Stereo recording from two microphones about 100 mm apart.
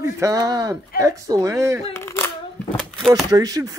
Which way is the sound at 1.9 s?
25° left (ahead or behind).